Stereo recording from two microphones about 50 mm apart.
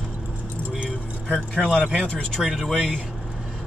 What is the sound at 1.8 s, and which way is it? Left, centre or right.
Speech, right.